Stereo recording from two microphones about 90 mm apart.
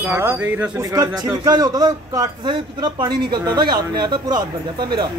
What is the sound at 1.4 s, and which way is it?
Speech, 45° right (ahead or behind).